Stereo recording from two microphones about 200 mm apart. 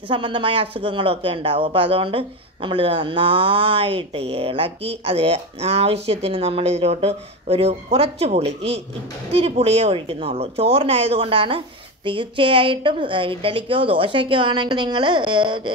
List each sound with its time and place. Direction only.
0.1 s speech: 25° right (ahead or behind)